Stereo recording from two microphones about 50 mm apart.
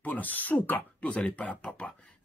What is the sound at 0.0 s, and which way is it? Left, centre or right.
Speech, left.